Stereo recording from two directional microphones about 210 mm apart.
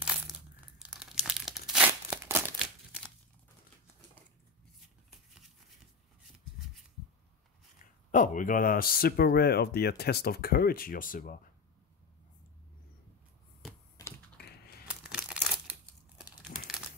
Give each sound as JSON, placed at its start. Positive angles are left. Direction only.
{"t": 0.7, "sound": "crumpling", "side_deg": -5}
{"t": 7.8, "sound": "speech", "side_deg": 40}
{"t": 13.9, "sound": "typing", "side_deg": 15}
{"t": 14.9, "sound": "crumpling", "side_deg": -5}